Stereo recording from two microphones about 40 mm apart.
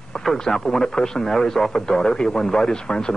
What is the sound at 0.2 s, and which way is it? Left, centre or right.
Speech, centre.